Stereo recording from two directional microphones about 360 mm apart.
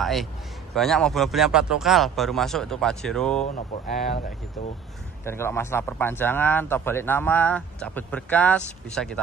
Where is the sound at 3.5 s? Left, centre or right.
Left.